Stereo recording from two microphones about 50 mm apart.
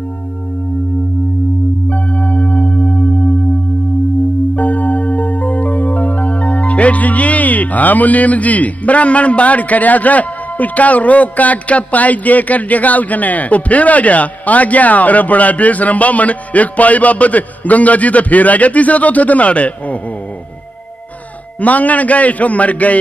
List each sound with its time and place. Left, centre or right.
1.9 s singing bowl: left
4.6 s music: left
21.5 s a man's voice: left